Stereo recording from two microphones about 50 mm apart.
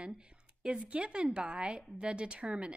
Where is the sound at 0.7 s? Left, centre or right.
Right.